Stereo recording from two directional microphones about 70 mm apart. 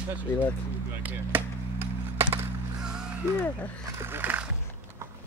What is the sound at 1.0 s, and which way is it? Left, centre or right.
Chop, right.